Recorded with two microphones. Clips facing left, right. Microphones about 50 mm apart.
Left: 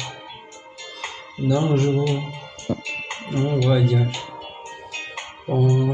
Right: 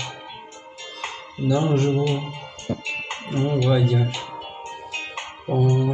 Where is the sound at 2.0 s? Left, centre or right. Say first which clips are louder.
Even; right.